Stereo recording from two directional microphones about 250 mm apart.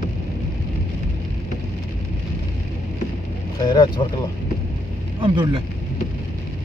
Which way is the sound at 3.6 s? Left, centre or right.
Centre.